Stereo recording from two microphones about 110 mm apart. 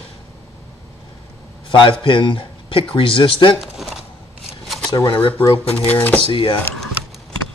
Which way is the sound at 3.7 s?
5° right (ahead or behind).